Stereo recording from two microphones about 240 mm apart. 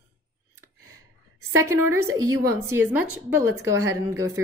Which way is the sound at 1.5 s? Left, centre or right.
Centre.